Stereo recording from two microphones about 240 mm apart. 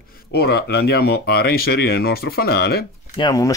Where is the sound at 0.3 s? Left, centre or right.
Left.